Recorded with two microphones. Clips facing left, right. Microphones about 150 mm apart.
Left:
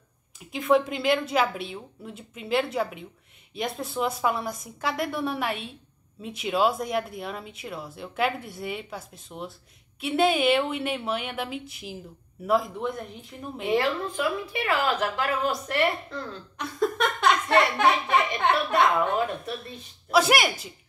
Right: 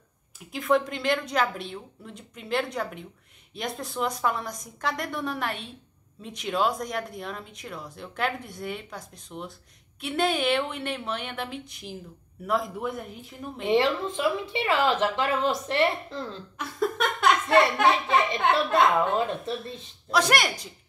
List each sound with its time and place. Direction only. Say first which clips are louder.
0.4 s speech: left 2 dB; centre (ahead or behind)
13.7 s a woman's voice: right 2 dB; 20° right (ahead or behind)
16.5 s speech: left 2 dB; centre (ahead or behind)
19.7 s speech: left 6 dB; 5° left (ahead or behind)